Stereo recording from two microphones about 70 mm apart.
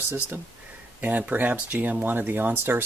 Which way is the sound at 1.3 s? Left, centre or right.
Right.